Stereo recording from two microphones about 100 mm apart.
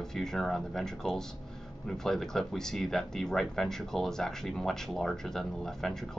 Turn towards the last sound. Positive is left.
turn(degrees=5)  # may be behind; listen again after turning